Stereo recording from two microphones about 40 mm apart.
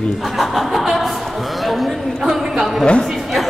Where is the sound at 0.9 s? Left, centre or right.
Centre.